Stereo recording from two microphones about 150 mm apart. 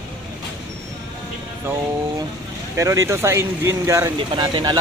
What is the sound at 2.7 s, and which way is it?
Speech, 20° right (ahead or behind).